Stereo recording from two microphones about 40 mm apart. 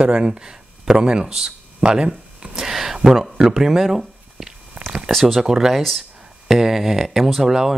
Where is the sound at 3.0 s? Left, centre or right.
Centre.